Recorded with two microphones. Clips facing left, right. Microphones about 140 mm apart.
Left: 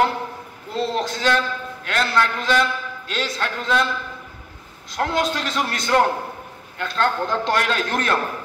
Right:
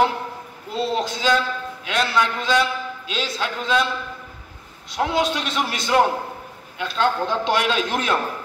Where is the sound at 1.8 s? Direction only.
15° right (ahead or behind).